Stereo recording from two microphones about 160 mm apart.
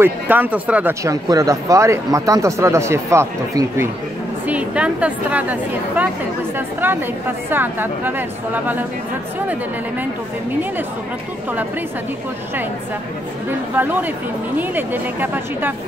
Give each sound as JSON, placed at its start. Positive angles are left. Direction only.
{"t": 0.0, "sound": "a woman's voice", "side_deg": -10}
{"t": 1.0, "sound": "a woman's voice", "side_deg": -20}
{"t": 7.4, "sound": "a woman's voice", "side_deg": -10}
{"t": 13.8, "sound": "a woman's voice", "side_deg": -10}